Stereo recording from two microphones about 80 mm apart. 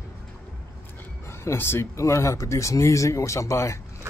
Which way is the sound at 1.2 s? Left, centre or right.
Left.